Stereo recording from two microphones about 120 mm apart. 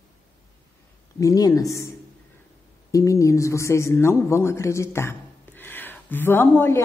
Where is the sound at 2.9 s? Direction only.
25° left (ahead or behind).